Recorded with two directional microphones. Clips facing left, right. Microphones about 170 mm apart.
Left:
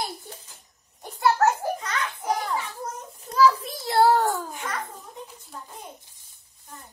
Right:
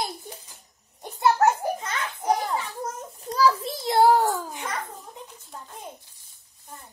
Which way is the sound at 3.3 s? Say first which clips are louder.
Left 2 dB; 30° right (ahead or behind).